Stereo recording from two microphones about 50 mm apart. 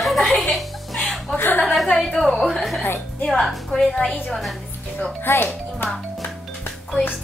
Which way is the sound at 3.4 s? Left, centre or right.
Centre.